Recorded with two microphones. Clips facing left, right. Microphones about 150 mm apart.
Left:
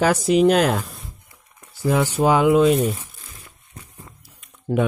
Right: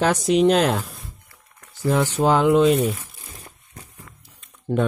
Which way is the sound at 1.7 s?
5° left (ahead or behind).